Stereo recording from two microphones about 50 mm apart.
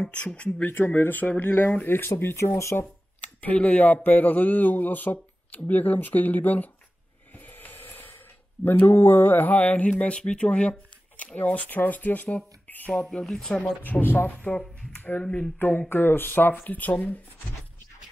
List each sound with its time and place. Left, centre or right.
0.6 s speech: left
1.9 s speech: left
2.5 s speech: left
3.4 s speech: left
7.3 s music: left
8.6 s speech: left
12.6 s a sound: left
13.2 s speech: centre
13.8 s speech: left
14.5 s speech: left
15.0 s a sound: left
15.9 s speech: left